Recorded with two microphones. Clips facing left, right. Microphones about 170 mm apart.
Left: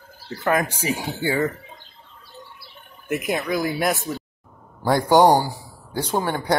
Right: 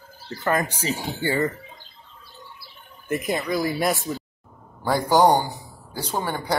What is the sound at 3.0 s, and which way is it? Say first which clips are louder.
A man's voice: left 1 dB; 5° left (ahead or behind).